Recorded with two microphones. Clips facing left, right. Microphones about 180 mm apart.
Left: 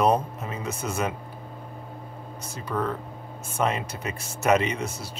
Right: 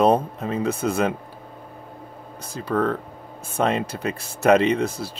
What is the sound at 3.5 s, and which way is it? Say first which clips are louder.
Speech: right 4 dB; 30° right (ahead or behind).